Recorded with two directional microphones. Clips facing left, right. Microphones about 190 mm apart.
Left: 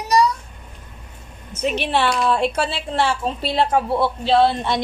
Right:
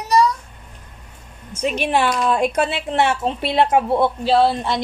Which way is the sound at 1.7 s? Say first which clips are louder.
Right 2 dB; 15° right (ahead or behind).